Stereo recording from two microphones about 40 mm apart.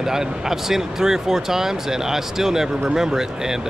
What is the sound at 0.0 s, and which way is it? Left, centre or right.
Speech, centre.